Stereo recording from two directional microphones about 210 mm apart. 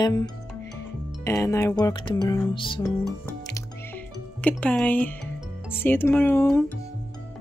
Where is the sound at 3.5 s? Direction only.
10° left (ahead or behind).